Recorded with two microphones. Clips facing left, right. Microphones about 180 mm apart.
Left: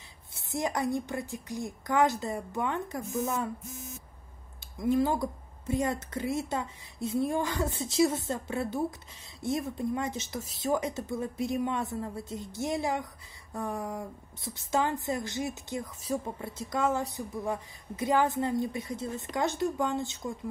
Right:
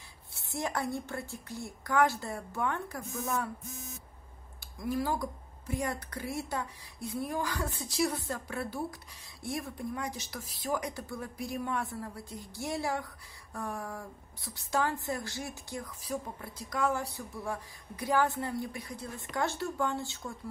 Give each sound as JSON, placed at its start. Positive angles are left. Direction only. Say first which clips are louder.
{"t": 0.3, "sound": "speech", "louder": "left 3 dB", "side_deg": 20}
{"t": 4.7, "sound": "speech", "louder": "left 6 dB", "side_deg": 25}